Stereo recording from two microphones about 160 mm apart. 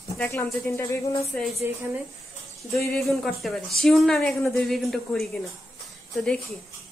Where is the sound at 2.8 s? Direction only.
Centre (ahead or behind).